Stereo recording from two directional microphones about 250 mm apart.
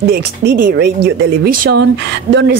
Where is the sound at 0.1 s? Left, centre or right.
Right.